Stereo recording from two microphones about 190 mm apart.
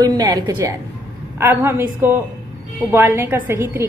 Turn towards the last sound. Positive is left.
turn(degrees=-15)  # may be behind; listen again after turning